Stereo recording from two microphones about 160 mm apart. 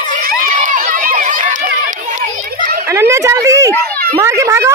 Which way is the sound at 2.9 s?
20° right (ahead or behind).